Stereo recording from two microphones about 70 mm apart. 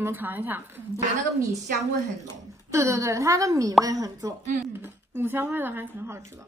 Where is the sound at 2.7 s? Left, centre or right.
Right.